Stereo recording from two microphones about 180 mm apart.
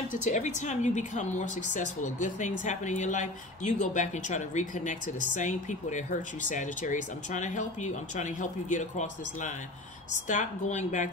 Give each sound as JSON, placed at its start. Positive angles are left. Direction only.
{"t": 0.1, "sound": "a woman's voice", "side_deg": 40}